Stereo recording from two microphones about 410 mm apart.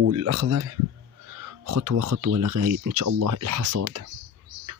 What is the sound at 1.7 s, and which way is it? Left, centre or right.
Speech, right.